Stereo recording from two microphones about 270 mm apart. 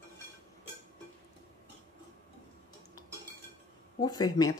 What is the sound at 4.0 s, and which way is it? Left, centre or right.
Speech, centre.